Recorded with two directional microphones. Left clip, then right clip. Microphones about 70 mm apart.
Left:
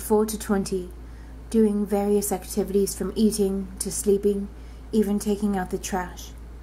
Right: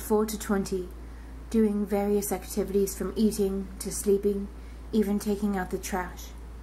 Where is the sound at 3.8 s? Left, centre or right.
Left.